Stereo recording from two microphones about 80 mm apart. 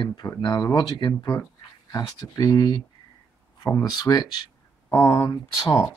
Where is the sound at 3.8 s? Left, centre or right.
Left.